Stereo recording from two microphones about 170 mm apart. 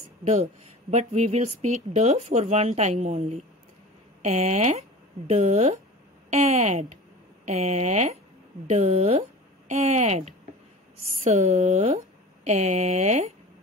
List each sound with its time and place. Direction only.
0.4 s speech: 40° right (ahead or behind)